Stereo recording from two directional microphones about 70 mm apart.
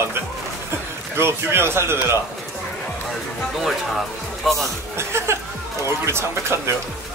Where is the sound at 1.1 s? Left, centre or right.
Right.